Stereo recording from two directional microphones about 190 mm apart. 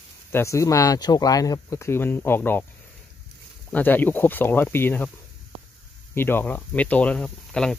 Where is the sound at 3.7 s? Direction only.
10° left (ahead or behind).